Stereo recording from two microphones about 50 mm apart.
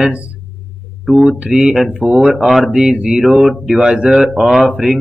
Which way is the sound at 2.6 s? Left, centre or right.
Right.